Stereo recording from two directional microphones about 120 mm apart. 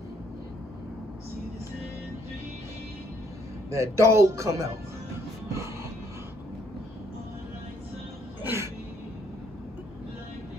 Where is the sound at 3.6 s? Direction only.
25° right (ahead or behind).